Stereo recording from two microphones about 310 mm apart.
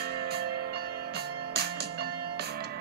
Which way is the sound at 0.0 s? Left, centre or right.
Right.